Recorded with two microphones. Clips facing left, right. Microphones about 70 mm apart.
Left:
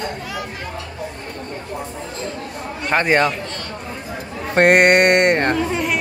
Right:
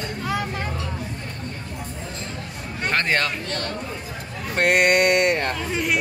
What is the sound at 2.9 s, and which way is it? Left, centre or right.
Speech, centre.